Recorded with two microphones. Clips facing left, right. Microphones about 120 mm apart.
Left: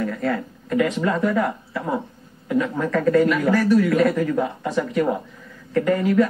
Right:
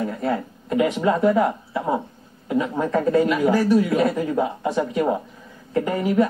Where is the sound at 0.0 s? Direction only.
20° right (ahead or behind).